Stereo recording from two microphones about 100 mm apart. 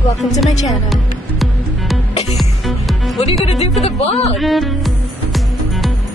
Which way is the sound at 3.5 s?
90° left.